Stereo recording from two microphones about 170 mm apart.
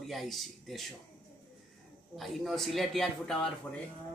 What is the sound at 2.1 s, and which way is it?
Speech, centre (ahead or behind).